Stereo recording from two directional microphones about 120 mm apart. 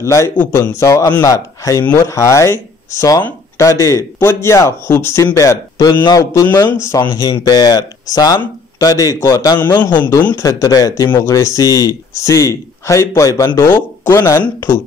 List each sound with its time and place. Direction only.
0.0 s a man's voice: 25° left (ahead or behind)
7.0 s a man's voice: 35° left (ahead or behind)
10.2 s a man's voice: 25° left (ahead or behind)